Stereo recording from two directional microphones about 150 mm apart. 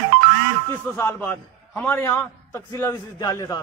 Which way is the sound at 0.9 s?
15° left (ahead or behind).